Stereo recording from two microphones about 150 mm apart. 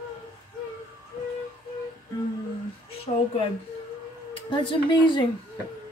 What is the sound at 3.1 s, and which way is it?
Speech, 40° left (ahead or behind).